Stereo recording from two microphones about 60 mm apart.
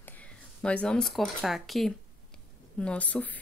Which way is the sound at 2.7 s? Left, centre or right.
Centre.